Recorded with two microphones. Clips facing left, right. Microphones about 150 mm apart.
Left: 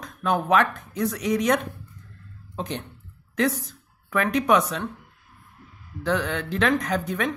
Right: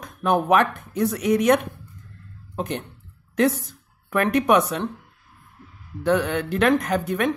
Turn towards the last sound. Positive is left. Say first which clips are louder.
# right 3 dB
turn(degrees=-10)  # may be behind; listen again after turning